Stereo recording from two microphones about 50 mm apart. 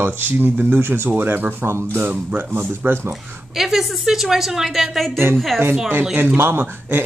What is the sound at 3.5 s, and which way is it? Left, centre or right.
A woman's voice, centre.